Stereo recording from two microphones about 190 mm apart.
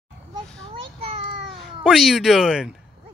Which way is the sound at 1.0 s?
30° right (ahead or behind).